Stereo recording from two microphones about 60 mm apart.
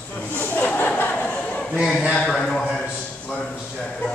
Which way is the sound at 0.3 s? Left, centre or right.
Left.